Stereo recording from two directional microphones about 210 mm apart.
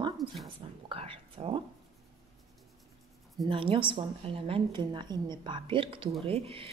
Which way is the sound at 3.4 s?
25° right (ahead or behind).